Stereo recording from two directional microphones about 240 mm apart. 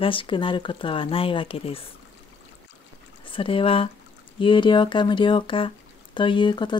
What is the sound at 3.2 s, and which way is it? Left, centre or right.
Speech, left.